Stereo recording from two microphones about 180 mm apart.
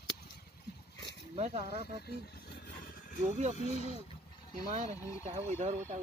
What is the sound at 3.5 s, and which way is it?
Speech, 40° left (ahead or behind).